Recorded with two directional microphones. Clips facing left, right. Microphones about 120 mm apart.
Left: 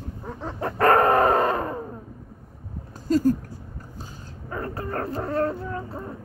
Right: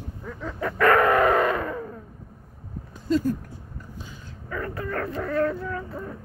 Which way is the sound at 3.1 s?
40° left (ahead or behind).